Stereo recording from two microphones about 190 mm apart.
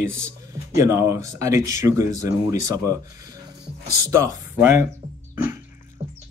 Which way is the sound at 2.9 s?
20° right (ahead or behind).